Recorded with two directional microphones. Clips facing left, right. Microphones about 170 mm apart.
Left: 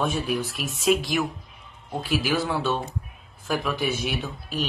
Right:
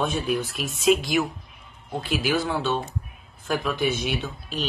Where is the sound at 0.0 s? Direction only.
Centre (ahead or behind).